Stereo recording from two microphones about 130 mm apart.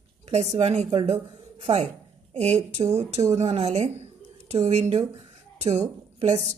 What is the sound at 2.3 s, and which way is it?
A woman's voice, 60° right (ahead or behind).